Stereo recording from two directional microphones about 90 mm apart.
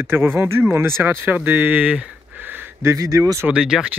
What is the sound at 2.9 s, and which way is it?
Speech, 40° right (ahead or behind).